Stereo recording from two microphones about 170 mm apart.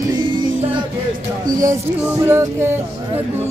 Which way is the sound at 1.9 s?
15° right (ahead or behind).